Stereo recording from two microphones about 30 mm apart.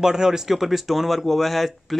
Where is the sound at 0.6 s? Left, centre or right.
Centre.